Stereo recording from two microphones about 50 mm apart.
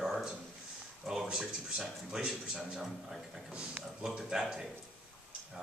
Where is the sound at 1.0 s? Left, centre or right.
Centre.